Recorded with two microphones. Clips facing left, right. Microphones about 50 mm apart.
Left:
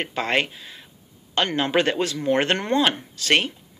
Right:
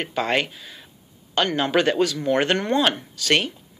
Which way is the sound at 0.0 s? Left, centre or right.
Left.